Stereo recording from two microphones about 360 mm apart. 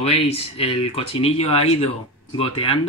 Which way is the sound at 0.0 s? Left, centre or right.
Centre.